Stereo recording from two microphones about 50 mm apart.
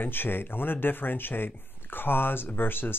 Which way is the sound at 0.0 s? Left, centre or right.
Left.